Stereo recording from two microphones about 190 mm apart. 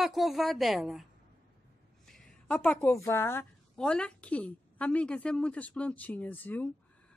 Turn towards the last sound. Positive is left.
turn(degrees=10)  # may be behind; listen again after turning